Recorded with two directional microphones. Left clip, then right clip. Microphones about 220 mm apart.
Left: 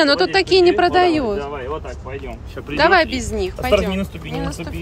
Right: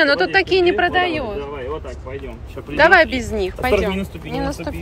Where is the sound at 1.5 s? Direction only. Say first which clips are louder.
Left 1 dB; 5° left (ahead or behind).